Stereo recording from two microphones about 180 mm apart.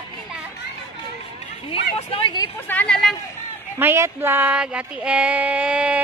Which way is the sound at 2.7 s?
5° left (ahead or behind).